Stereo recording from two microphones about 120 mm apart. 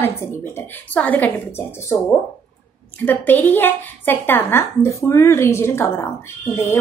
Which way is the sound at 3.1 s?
15° left (ahead or behind).